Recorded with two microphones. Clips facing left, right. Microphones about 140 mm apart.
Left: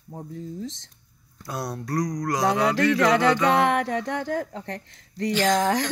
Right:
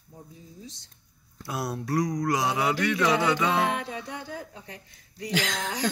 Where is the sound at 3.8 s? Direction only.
75° left (ahead or behind).